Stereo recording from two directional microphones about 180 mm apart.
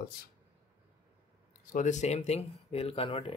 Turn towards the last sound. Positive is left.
turn(degrees=30)  # may be behind; listen again after turning